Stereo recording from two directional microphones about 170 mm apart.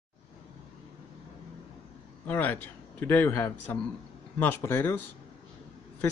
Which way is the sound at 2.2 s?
10° left (ahead or behind).